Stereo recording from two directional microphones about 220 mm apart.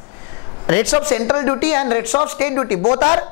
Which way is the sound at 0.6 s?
20° left (ahead or behind).